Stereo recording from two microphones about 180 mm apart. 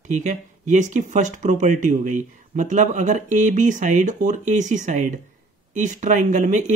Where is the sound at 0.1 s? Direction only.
40° right (ahead or behind).